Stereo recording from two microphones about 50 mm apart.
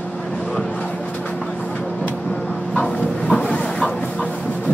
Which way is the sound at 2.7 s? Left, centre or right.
Centre.